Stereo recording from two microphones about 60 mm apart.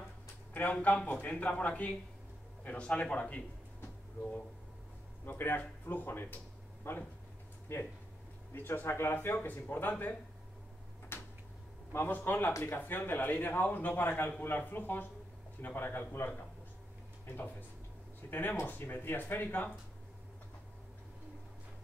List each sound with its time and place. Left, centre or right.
0.5 s a sound: left
0.7 s a man's voice: centre
5.2 s speech: left
11.1 s a sound: left
11.9 s speech: left
17.3 s speech: left